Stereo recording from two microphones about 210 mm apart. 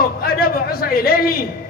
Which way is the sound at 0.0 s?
45° left (ahead or behind).